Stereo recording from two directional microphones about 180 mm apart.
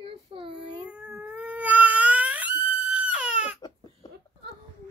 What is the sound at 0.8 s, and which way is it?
Cat, 5° right (ahead or behind).